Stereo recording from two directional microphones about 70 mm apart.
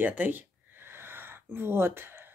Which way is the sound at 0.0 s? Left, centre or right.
Right.